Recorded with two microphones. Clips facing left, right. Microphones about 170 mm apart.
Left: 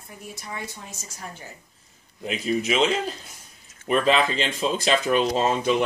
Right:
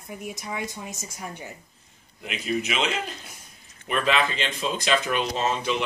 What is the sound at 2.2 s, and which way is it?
Speech, 35° left (ahead or behind).